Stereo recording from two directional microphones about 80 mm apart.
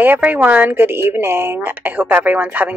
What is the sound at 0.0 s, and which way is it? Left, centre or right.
A woman's voice, right.